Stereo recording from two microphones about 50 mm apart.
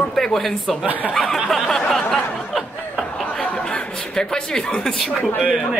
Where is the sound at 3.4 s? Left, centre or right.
Centre.